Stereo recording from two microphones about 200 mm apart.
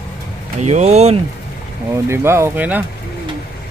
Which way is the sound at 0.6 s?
35° right (ahead or behind).